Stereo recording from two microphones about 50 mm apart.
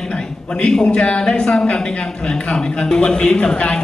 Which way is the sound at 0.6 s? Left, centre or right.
Centre.